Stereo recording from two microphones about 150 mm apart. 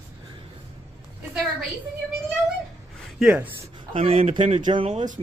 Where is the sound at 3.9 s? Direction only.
40° right (ahead or behind).